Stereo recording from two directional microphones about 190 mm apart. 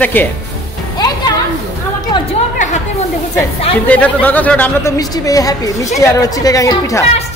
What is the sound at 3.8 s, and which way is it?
A woman's voice, 10° left (ahead or behind).